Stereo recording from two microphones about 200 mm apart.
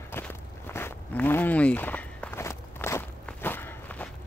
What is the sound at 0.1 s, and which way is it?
Walk, 10° left (ahead or behind).